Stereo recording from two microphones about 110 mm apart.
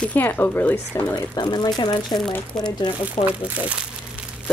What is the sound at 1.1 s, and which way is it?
Speech, 40° left (ahead or behind).